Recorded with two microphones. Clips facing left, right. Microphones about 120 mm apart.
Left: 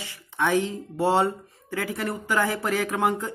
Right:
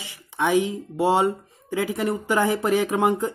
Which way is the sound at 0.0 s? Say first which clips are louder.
Right 2 dB; 15° right (ahead or behind).